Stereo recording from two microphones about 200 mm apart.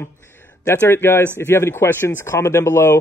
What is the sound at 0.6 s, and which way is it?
Speech, 10° left (ahead or behind).